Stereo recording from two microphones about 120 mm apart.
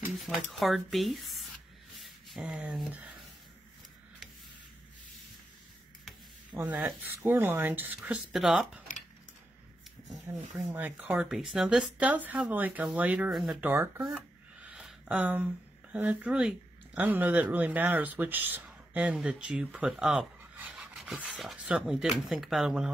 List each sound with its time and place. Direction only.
0.2 s speech: centre (ahead or behind)
6.6 s speech: 15° right (ahead or behind)
8.3 s speech: 5° right (ahead or behind)
10.2 s speech: 15° right (ahead or behind)
11.1 s speech: 5° right (ahead or behind)
13.3 s speech: centre (ahead or behind)
13.6 s speech: 15° right (ahead or behind)